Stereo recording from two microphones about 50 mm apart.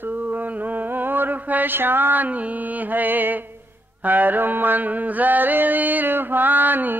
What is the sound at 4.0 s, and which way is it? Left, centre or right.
Mantra, right.